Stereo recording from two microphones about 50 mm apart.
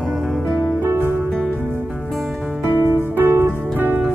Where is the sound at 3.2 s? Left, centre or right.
Right.